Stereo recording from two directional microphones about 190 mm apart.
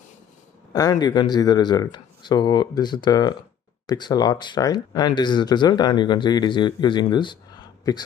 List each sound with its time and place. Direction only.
0.7 s speech: 20° left (ahead or behind)